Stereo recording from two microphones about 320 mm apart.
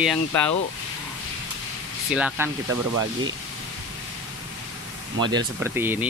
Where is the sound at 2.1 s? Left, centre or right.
Centre.